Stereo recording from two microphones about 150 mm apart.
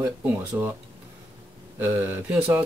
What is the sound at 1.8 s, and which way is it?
Speech, 15° right (ahead or behind).